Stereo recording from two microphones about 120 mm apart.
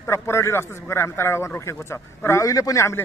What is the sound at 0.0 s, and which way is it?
A man's voice, 20° left (ahead or behind).